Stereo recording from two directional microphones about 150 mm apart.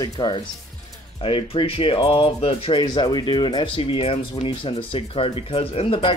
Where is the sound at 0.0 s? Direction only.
30° left (ahead or behind).